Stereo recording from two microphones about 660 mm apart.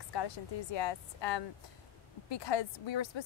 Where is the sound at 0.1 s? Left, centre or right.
Left.